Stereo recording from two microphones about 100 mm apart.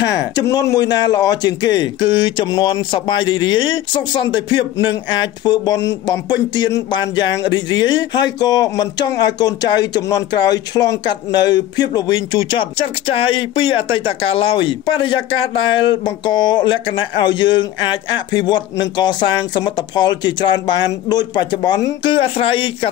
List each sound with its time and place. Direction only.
0.0 s speech: 35° left (ahead or behind)
22.0 s speech: 60° left (ahead or behind)